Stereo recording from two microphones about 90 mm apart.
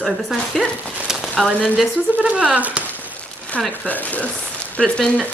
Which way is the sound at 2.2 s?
15° right (ahead or behind).